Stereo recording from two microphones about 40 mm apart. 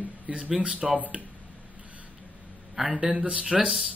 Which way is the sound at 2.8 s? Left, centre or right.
Right.